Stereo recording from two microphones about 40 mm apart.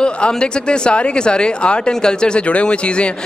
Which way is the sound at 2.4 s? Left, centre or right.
Left.